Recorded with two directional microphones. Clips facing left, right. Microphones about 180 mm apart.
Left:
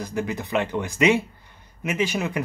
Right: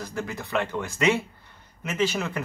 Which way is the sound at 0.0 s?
15° left (ahead or behind).